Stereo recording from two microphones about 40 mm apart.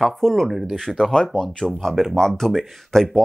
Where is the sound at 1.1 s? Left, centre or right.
Centre.